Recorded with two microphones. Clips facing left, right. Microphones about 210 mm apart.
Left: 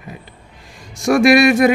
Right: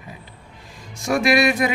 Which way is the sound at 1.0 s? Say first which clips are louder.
Left 7 dB; 80° left.